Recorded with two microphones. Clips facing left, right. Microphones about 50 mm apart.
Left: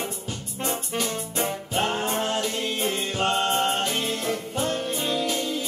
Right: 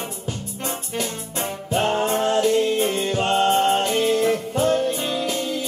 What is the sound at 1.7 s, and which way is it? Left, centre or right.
Music, centre.